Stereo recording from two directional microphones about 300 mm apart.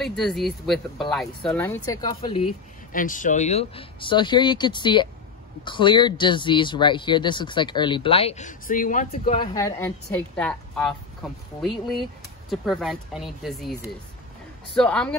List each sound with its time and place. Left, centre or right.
0.0 s speech: centre
2.9 s speech: left
9.4 s speech: centre